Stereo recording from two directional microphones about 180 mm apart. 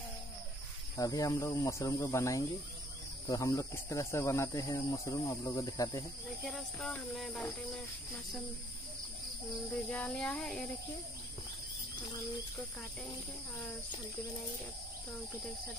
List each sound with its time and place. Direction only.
0.9 s speech: 20° left (ahead or behind)
6.4 s a sound: 5° left (ahead or behind)
9.8 s speech: 5° left (ahead or behind)